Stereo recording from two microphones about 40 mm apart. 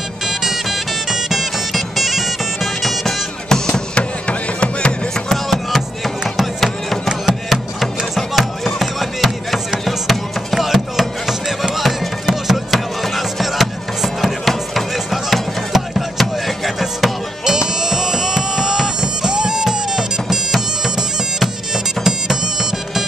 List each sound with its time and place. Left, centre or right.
0.3 s music: centre
3.4 s music: centre
3.9 s a sound: left
5.1 s music: centre
18.9 s bagpipes: centre
22.0 s music: centre